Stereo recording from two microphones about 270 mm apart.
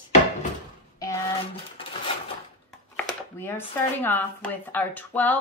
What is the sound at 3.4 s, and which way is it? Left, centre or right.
Speech, centre.